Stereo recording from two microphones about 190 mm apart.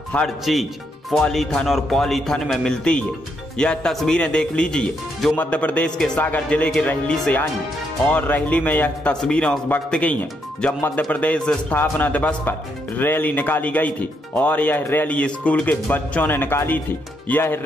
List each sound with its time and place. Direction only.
0.1 s a man's voice: centre (ahead or behind)